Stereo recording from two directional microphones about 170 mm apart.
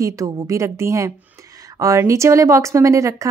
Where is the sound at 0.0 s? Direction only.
20° right (ahead or behind).